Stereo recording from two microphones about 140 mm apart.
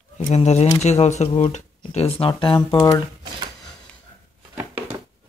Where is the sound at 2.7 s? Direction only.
25° left (ahead or behind).